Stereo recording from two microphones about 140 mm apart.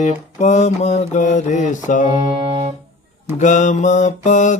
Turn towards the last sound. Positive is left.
turn(degrees=60)  # may be behind; listen again after turning